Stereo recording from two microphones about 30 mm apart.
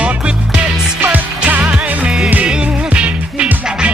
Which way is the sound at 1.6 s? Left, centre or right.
Right.